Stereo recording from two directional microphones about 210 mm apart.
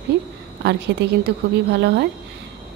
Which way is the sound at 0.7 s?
55° right (ahead or behind).